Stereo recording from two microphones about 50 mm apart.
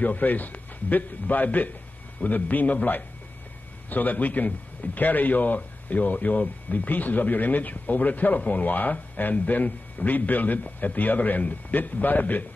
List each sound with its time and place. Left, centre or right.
0.0 s a man's voice: left